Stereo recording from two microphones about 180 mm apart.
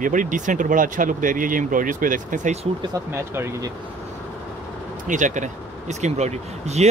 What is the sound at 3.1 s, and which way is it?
Speech, 15° right (ahead or behind).